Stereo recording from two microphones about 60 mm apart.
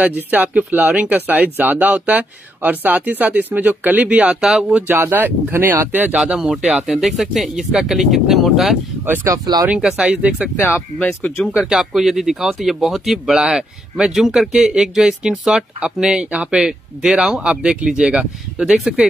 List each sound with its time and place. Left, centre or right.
0.0 s speech: right
4.4 s speech: centre
4.7 s speech: right
6.1 s speech: centre
9.3 s speech: right
9.8 s speech: centre
11.0 s speech: centre
11.6 s speech: centre